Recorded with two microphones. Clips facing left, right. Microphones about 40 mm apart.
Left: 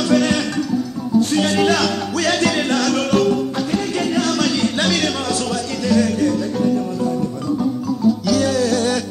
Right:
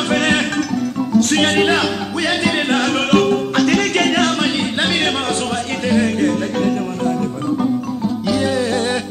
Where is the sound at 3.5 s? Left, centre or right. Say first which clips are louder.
Right 6 dB; right.